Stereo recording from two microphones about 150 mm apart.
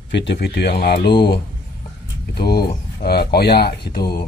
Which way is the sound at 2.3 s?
90° left.